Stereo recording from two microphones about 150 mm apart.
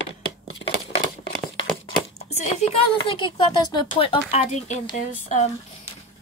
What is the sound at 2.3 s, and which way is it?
Speech, 45° left (ahead or behind).